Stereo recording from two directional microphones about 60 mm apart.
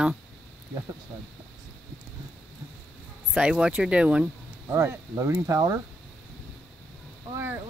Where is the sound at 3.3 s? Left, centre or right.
Centre.